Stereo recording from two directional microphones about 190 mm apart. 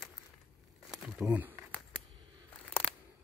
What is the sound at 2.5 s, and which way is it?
Crunch, 5° left (ahead or behind).